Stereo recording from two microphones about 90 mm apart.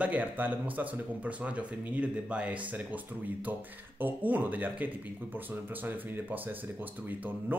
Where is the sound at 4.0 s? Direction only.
20° right (ahead or behind).